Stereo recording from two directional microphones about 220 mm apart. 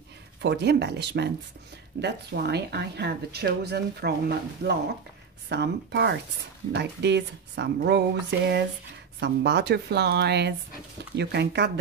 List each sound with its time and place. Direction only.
0.4 s speech: 50° right (ahead or behind)